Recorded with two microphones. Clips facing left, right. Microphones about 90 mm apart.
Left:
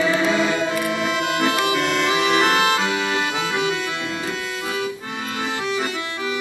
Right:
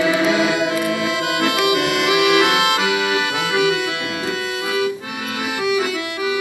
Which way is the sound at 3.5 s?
75° right (ahead or behind).